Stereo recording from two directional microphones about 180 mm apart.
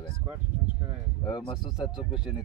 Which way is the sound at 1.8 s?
5° right (ahead or behind).